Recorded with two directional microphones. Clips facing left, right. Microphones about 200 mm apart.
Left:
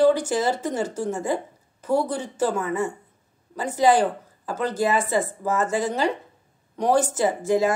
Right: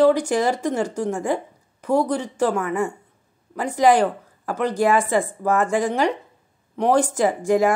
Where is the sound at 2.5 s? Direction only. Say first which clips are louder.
Right 2 dB; 15° right (ahead or behind).